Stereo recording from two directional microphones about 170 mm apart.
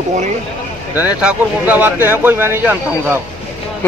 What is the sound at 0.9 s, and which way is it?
Speech, 10° right (ahead or behind).